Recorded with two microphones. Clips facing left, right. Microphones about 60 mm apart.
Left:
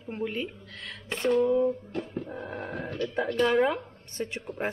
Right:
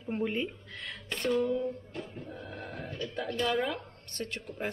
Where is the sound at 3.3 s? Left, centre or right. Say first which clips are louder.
Left 6 dB; left.